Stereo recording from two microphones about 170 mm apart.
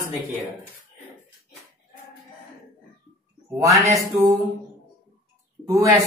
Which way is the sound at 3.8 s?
20° right (ahead or behind).